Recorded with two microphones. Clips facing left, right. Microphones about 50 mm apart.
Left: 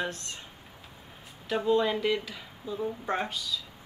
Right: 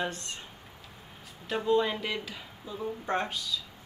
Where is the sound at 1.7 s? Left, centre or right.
Centre.